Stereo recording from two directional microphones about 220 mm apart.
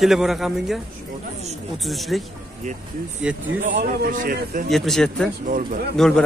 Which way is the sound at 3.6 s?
40° right (ahead or behind).